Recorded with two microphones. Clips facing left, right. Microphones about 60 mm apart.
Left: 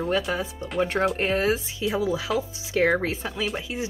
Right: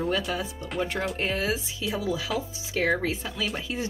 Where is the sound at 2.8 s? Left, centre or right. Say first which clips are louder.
Left 3 dB; left.